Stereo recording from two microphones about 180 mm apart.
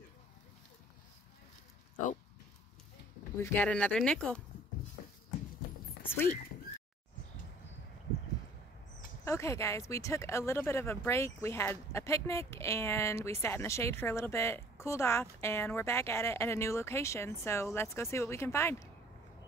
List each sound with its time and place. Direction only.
3.3 s speech: 10° left (ahead or behind)
5.0 s horse: 45° left (ahead or behind)
9.2 s speech: 15° left (ahead or behind)